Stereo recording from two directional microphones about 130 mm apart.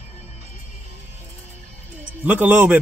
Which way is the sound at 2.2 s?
10° right (ahead or behind).